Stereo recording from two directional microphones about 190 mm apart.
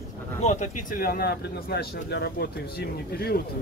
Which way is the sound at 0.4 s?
40° left (ahead or behind).